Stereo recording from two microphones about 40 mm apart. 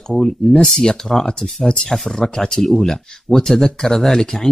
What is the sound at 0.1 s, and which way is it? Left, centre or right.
Speech, centre.